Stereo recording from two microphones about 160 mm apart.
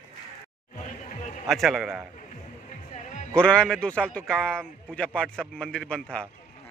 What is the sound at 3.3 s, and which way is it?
A man's voice, 5° left (ahead or behind).